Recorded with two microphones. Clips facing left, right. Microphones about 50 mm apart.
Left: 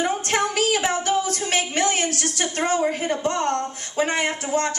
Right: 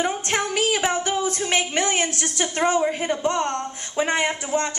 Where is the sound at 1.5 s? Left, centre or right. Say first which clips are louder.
Left 1 dB; right.